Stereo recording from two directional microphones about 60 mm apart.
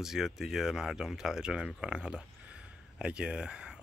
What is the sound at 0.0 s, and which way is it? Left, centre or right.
Speech, centre.